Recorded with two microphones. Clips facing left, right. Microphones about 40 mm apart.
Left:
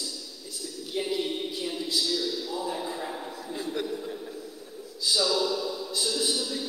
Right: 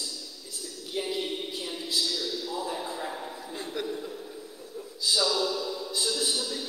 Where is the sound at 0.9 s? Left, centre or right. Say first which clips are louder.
Left 2 dB; centre.